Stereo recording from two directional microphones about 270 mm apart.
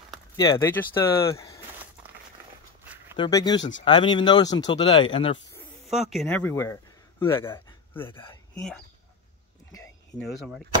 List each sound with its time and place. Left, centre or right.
0.4 s speech: centre
3.2 s speech: centre
5.9 s speech: centre
8.1 s speech: centre
9.7 s a sound: centre
10.2 s speech: centre